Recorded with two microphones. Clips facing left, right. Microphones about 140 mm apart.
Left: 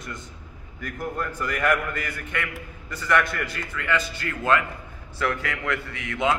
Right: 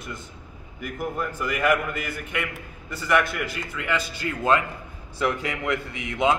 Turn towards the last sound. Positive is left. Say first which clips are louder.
# right 2 dB
turn(degrees=-15)  # may be behind; listen again after turning